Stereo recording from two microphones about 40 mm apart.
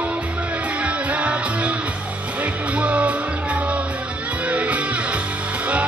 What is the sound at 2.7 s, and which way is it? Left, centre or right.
Music, right.